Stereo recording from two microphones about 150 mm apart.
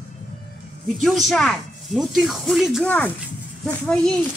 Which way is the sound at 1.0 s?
Centre (ahead or behind).